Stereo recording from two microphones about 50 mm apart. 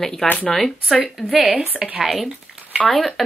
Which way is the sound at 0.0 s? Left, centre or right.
Centre.